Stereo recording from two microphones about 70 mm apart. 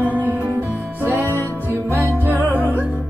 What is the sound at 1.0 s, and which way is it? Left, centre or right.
Music, right.